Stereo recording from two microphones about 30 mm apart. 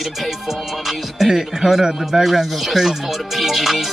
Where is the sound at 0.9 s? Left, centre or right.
Centre.